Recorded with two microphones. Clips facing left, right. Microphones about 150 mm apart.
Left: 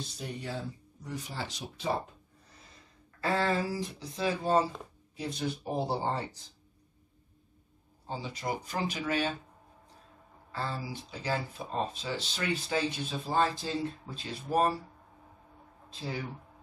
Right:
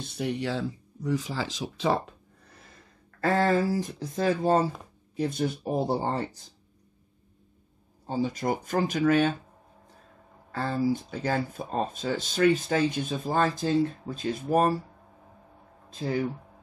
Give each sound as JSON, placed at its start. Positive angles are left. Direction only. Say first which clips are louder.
{"t": 0.0, "sound": "speech", "louder": "right 9 dB", "side_deg": -65}
{"t": 2.5, "sound": "speech", "louder": "right 3 dB", "side_deg": -55}
{"t": 8.1, "sound": "speech", "louder": "right 8 dB", "side_deg": -50}
{"t": 10.5, "sound": "speech", "louder": "right 10 dB", "side_deg": -50}
{"t": 15.9, "sound": "speech", "louder": "right 9 dB", "side_deg": -50}